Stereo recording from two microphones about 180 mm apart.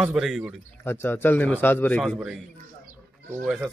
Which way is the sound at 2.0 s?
Centre (ahead or behind).